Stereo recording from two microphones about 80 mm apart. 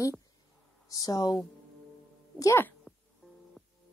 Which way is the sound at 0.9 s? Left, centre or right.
Left.